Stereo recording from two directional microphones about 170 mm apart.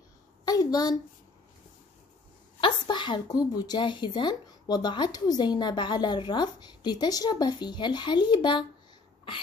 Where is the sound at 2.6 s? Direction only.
25° left (ahead or behind).